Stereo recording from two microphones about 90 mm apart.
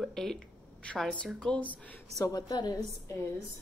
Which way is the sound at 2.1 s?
45° left (ahead or behind).